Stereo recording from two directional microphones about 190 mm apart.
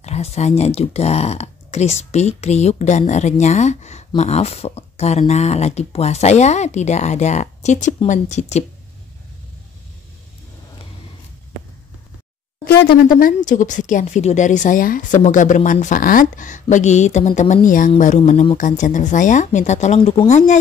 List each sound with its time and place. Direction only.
0.0 s speech: 35° left (ahead or behind)
12.6 s speech: 50° left (ahead or behind)